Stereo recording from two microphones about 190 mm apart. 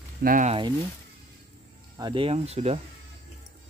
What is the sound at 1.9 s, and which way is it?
Speech, 25° right (ahead or behind).